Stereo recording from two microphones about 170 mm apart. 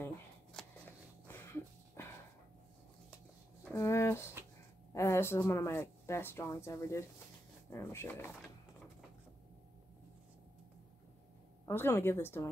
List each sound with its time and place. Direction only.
0.0 s shuffling cards: 10° left (ahead or behind)
3.7 s a sound: 15° left (ahead or behind)
4.9 s a woman's voice: 15° left (ahead or behind)
11.6 s a woman's voice: 15° left (ahead or behind)